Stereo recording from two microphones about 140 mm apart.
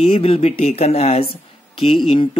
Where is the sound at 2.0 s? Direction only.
35° left (ahead or behind).